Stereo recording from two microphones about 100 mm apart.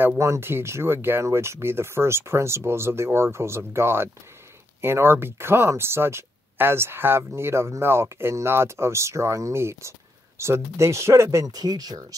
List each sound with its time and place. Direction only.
0.2 s speech: 25° right (ahead or behind); by 12.2 s 40° right (ahead or behind)